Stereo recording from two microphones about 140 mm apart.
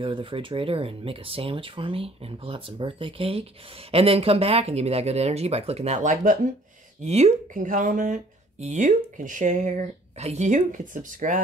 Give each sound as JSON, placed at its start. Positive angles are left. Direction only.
{"t": 0.0, "sound": "speech", "side_deg": -40}
{"t": 7.0, "sound": "speech", "side_deg": -50}